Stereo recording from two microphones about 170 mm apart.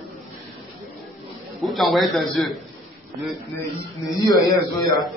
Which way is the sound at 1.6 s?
Centre (ahead or behind).